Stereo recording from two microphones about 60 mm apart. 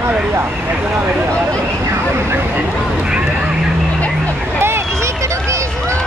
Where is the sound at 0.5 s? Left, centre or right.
Right.